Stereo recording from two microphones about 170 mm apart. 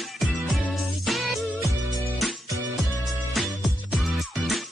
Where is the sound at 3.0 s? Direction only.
Centre (ahead or behind).